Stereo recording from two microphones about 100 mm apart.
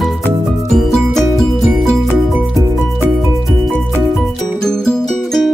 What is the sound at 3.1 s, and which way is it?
Music, centre (ahead or behind).